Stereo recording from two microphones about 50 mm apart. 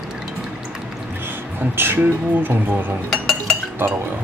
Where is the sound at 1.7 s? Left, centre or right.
Right.